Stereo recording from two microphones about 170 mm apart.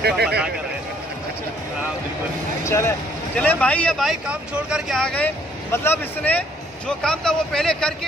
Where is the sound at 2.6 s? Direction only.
15° left (ahead or behind).